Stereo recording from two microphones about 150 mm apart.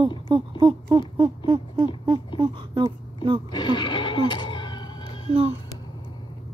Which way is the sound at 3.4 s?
30° left (ahead or behind).